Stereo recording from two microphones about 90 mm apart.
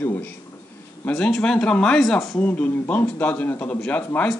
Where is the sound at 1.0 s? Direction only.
10° left (ahead or behind).